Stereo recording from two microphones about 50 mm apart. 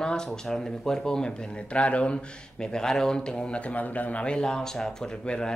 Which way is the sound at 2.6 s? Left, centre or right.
Centre.